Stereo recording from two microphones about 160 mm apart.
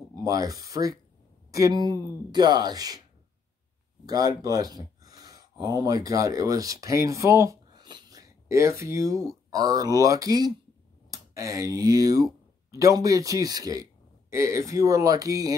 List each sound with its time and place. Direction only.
0.1 s speech: 20° right (ahead or behind)
4.0 s speech: 25° right (ahead or behind)